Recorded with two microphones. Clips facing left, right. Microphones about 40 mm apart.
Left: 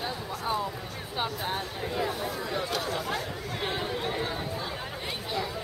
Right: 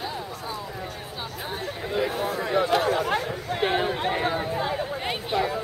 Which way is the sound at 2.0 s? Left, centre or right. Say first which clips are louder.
Right 6 dB; right.